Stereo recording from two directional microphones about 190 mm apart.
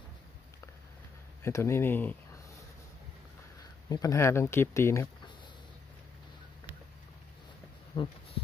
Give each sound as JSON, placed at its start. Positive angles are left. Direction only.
{"t": 1.4, "sound": "speech", "side_deg": 15}
{"t": 3.9, "sound": "speech", "side_deg": 15}
{"t": 7.9, "sound": "speech", "side_deg": 30}